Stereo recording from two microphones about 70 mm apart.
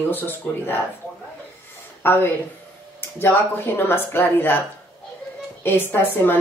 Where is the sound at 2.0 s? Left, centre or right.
Left.